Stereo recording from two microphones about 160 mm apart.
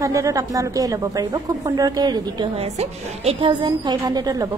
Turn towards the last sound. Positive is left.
turn(degrees=-25)  # may be behind; listen again after turning